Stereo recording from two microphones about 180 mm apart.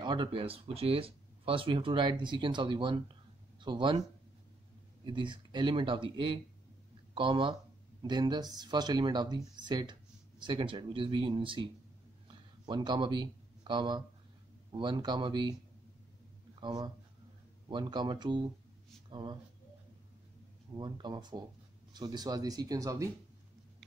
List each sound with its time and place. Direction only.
0.0 s speech: 25° right (ahead or behind)
5.0 s speech: 25° right (ahead or behind)
12.3 s a sound: 25° right (ahead or behind)
14.7 s speech: 25° right (ahead or behind)
16.5 s speech: 25° right (ahead or behind)
20.7 s speech: 25° right (ahead or behind)